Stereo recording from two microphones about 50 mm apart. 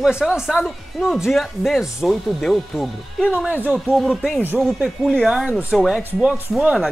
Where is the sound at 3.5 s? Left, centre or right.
Right.